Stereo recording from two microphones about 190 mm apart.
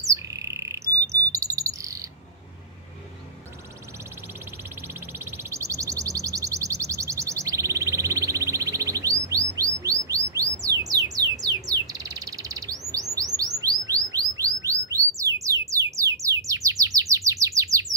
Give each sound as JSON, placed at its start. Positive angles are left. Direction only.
{"t": 0.0, "sound": "bird", "side_deg": -15}
{"t": 4.8, "sound": "a sound", "side_deg": -10}
{"t": 9.6, "sound": "bird", "side_deg": -15}